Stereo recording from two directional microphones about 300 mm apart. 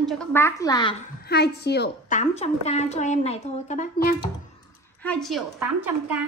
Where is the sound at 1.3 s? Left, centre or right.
Left.